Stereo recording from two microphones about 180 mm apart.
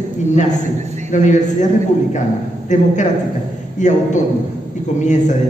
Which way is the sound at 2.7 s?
40° left (ahead or behind).